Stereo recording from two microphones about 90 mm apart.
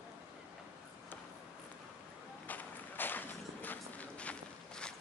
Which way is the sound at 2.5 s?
20° left (ahead or behind).